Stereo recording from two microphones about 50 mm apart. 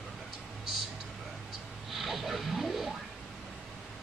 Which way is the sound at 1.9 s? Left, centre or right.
Centre.